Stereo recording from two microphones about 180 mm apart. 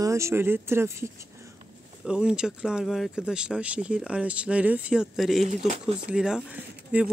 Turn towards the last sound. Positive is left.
turn(degrees=-5)  # may be behind; listen again after turning